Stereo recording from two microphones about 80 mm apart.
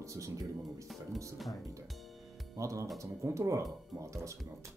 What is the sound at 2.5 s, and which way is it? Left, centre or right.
Speech, right.